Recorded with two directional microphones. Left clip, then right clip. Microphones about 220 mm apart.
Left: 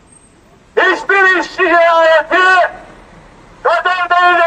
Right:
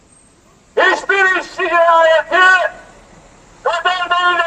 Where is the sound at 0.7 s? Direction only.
10° right (ahead or behind).